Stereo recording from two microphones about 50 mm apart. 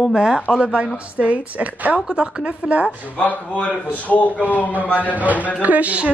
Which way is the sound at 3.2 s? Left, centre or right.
Left.